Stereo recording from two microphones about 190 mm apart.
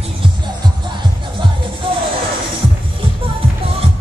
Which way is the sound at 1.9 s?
25° right (ahead or behind).